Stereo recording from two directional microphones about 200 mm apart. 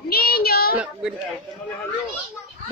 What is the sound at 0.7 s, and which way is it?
Speech, 5° right (ahead or behind).